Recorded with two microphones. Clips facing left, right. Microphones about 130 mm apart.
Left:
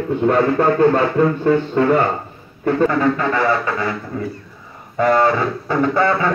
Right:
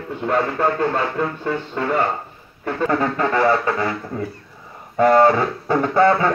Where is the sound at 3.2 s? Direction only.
35° right (ahead or behind).